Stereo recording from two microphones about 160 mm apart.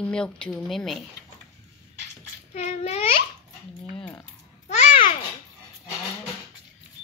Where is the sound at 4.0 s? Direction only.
15° left (ahead or behind).